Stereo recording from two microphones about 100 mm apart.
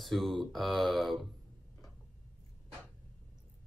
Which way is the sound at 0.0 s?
Centre (ahead or behind).